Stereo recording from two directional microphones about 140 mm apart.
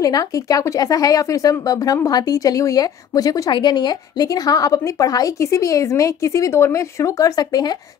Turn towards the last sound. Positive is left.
turn(degrees=25)  # may be behind; listen again after turning